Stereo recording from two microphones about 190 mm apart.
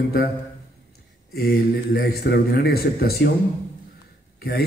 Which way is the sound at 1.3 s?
55° left (ahead or behind).